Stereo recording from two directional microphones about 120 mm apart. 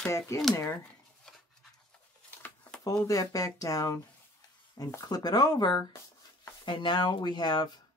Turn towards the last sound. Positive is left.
turn(degrees=35)  # may be behind; listen again after turning